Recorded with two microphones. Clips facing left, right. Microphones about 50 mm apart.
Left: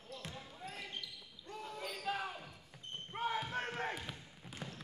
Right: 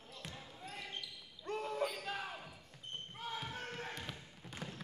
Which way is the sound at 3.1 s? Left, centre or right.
Left.